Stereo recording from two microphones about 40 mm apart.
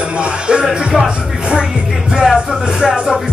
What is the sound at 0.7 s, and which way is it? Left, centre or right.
Music, centre.